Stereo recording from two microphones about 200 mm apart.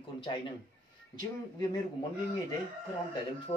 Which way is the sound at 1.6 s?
20° left (ahead or behind).